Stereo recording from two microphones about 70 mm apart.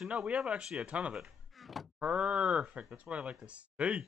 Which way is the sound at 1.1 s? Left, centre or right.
Centre.